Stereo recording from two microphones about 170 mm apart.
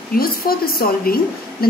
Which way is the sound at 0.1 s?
60° left (ahead or behind).